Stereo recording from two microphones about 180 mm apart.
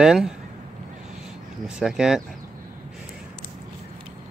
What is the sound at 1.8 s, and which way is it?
Speech, 5° right (ahead or behind).